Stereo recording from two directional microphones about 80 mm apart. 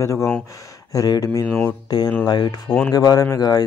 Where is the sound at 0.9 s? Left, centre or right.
Left.